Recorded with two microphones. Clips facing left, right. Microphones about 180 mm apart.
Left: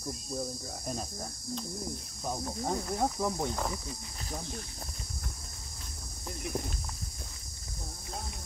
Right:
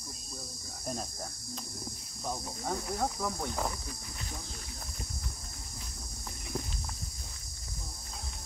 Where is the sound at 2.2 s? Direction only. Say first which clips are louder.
Left 3 dB; 15° left (ahead or behind).